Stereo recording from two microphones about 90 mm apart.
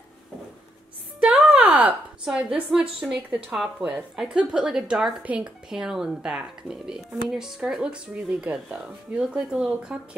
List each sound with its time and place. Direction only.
1.2 s music: 10° right (ahead or behind)
2.2 s speech: 5° right (ahead or behind)